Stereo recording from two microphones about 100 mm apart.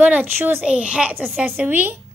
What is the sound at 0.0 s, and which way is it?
A woman's voice, 15° right (ahead or behind).